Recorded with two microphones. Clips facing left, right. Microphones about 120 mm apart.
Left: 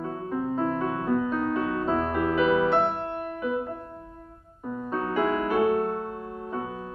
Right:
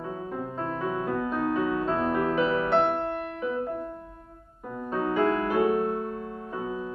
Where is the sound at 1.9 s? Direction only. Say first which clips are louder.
Even; 5° left (ahead or behind).